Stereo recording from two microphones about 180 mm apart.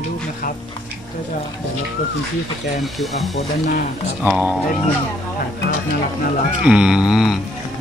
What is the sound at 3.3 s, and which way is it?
Speech, 40° left (ahead or behind).